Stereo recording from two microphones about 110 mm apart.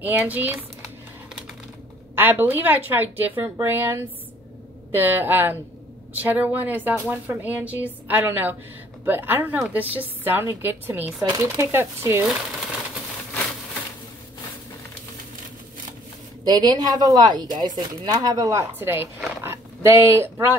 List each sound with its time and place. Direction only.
0.0 s a woman's voice: 15° right (ahead or behind)
2.1 s a woman's voice: 20° right (ahead or behind)
16.4 s speech: 35° right (ahead or behind); by 19.0 s 20° right (ahead or behind)
19.4 s a sound: 25° right (ahead or behind)